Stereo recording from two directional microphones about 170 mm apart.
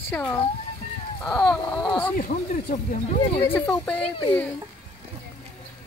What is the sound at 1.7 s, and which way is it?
Speech, 25° left (ahead or behind).